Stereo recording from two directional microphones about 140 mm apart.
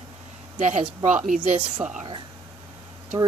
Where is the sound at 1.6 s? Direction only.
40° right (ahead or behind).